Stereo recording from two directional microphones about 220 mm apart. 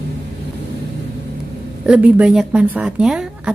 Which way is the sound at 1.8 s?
5° right (ahead or behind).